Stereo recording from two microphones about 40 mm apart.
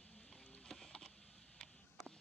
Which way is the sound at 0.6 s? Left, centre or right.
Centre.